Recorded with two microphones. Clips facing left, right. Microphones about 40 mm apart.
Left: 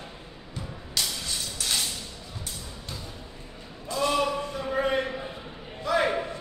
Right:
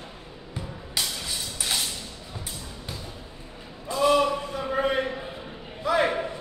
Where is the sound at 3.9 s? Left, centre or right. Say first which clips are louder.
Right 4 dB; centre.